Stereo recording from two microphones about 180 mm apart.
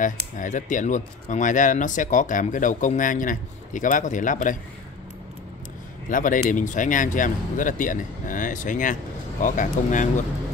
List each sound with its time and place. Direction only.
0.0 s speech: 45° left (ahead or behind)
6.0 s speech: 50° left (ahead or behind)